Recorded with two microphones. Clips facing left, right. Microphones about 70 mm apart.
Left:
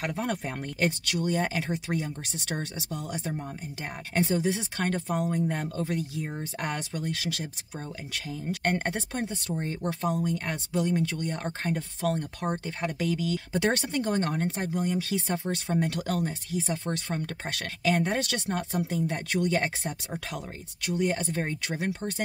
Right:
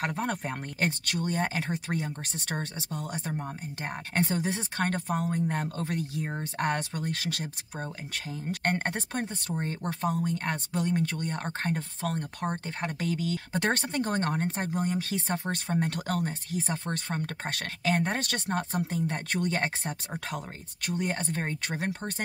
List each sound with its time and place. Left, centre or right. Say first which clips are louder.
0.1 s speech: even; right
5.8 s speech: left 1 dB; right